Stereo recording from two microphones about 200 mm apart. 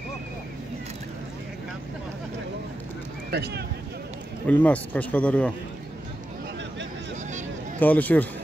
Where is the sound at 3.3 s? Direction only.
55° right (ahead or behind).